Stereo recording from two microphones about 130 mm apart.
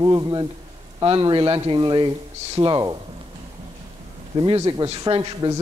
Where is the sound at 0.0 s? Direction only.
30° right (ahead or behind).